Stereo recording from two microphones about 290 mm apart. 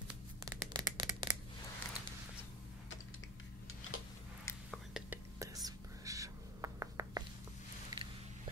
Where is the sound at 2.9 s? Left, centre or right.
Left.